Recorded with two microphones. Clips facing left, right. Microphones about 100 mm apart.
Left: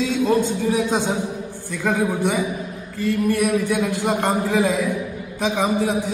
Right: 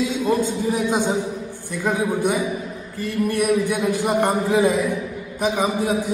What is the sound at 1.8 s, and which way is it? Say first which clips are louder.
A man's voice: even; 15° right (ahead or behind).